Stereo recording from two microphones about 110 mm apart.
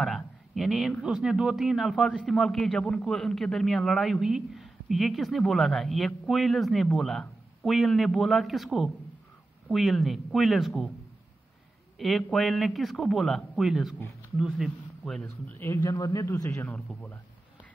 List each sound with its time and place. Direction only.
0.0 s a sound: centre (ahead or behind)
1.0 s a man's voice: 5° right (ahead or behind)
12.0 s a man's voice: centre (ahead or behind)
15.8 s speech: 35° left (ahead or behind)
16.6 s speech: 15° left (ahead or behind)